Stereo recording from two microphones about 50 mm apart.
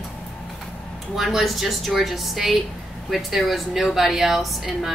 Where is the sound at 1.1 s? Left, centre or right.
Centre.